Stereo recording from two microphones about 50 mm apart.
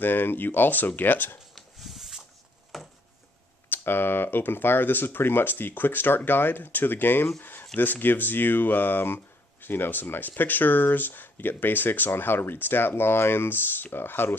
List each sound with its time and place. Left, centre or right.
0.0 s speech: left
1.5 s a sound: centre
3.7 s speech: left